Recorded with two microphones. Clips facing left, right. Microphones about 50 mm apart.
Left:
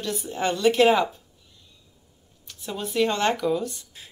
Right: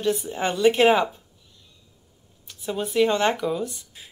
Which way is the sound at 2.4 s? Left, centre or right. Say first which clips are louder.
Right 4 dB; centre.